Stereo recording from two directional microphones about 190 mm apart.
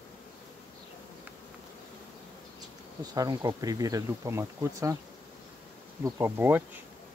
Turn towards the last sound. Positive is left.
turn(degrees=-10)  # may be behind; listen again after turning